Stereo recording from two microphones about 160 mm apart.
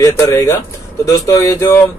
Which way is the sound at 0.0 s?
20° left (ahead or behind).